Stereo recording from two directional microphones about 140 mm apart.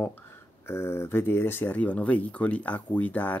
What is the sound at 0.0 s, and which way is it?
Speech, 15° left (ahead or behind).